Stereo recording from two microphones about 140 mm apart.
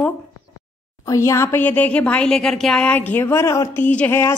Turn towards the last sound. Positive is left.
turn(degrees=15)  # may be behind; listen again after turning